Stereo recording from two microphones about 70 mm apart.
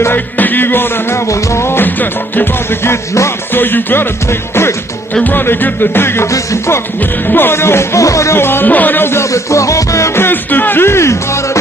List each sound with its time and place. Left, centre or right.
0.0 s music: left
1.2 s music: left
6.3 s music: left
7.0 s music: left